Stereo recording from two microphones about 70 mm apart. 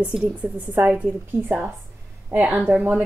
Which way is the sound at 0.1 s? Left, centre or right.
Right.